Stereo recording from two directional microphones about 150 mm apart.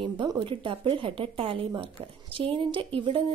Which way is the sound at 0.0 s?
30° right (ahead or behind).